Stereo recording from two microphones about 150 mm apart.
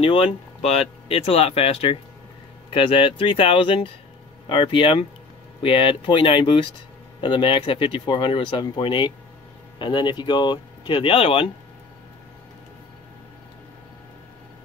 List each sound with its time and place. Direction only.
0.0 s speech: 40° left (ahead or behind)